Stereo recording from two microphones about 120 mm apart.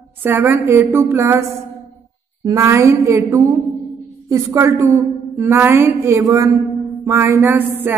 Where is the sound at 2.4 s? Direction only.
25° right (ahead or behind).